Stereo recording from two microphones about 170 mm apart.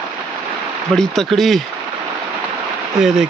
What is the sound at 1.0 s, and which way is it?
Speech, centre (ahead or behind).